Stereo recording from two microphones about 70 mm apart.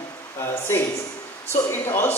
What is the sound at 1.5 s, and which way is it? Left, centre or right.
Speech, left.